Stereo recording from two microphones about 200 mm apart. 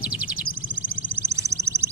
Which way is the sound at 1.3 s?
15° right (ahead or behind).